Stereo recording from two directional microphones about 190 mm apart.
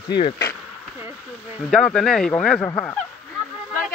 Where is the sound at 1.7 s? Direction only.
Centre (ahead or behind).